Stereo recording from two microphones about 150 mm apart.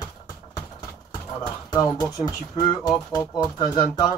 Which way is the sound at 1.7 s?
25° left (ahead or behind).